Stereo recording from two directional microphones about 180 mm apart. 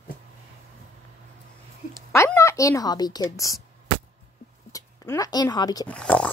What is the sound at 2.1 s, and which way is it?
A child's voice, 15° left (ahead or behind).